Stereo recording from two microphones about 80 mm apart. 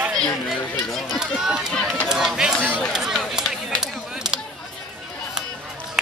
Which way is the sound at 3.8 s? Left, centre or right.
Centre.